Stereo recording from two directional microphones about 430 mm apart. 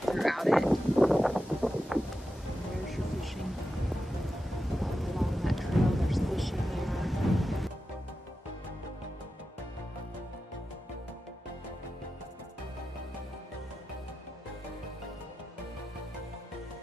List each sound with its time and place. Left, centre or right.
0.0 s a sound: centre
2.9 s music: centre
4.6 s thunder: centre